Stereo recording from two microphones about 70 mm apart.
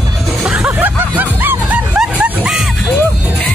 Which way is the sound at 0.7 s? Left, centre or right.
Right.